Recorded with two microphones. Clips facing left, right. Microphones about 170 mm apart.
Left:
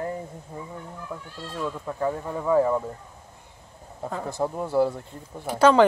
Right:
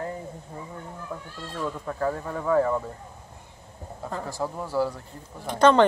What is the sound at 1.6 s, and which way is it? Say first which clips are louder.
Speech: left 1 dB; 10° left (ahead or behind).